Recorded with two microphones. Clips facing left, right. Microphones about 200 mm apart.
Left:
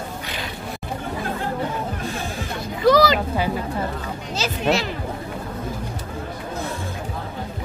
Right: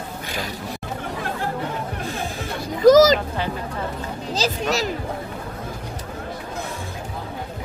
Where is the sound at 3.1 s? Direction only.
10° left (ahead or behind).